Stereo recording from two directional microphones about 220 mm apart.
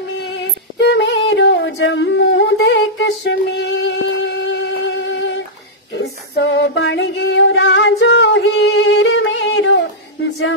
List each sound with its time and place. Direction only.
0.4 s music: 50° left (ahead or behind)